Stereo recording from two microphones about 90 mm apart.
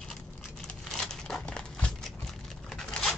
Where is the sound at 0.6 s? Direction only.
10° left (ahead or behind).